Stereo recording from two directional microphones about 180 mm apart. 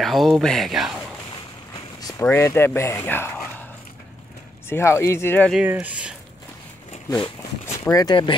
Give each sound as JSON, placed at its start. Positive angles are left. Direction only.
{"t": 0.0, "sound": "speech", "side_deg": 0}
{"t": 2.0, "sound": "a sound", "side_deg": 20}
{"t": 2.2, "sound": "speech", "side_deg": 15}
{"t": 4.6, "sound": "speech", "side_deg": 15}
{"t": 5.5, "sound": "speech", "side_deg": -5}
{"t": 7.1, "sound": "speech", "side_deg": 20}